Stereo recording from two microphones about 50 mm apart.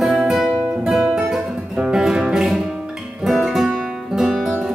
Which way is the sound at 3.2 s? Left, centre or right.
Centre.